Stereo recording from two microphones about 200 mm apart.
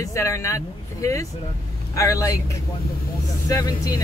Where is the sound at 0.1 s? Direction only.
15° left (ahead or behind).